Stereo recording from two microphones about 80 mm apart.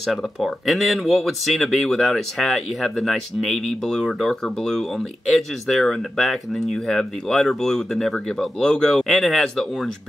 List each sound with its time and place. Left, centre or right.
0.0 s speech: centre